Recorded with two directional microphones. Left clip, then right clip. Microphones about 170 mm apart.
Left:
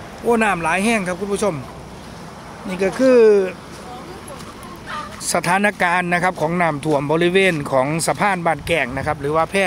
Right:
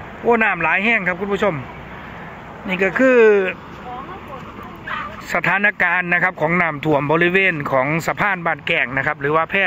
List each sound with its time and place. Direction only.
0.3 s speech: 10° left (ahead or behind)
2.7 s speech: 5° left (ahead or behind)
5.3 s speech: 20° left (ahead or behind)